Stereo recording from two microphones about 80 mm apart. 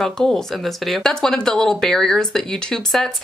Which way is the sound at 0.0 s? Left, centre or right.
Centre.